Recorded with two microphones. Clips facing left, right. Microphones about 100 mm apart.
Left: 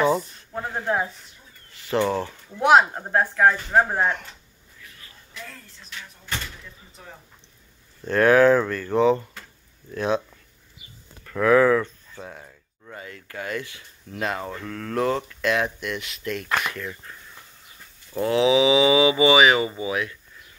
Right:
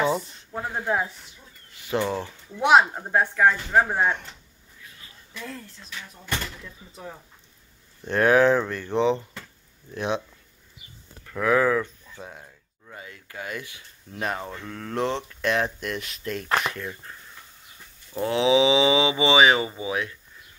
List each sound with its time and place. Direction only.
0.5 s speech: 10° right (ahead or behind)
2.0 s speech: centre (ahead or behind)
8.0 s speech: 20° right (ahead or behind)
11.2 s speech: 10° right (ahead or behind); by 15.7 s 30° right (ahead or behind)
15.8 s speech: 40° right (ahead or behind); by 17.2 s 20° right (ahead or behind)
18.2 s speech: 30° right (ahead or behind)